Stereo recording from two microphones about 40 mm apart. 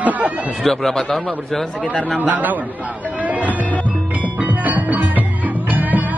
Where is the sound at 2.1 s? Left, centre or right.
Right.